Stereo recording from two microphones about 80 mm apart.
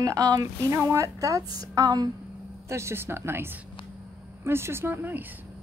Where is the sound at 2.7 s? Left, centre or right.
Right.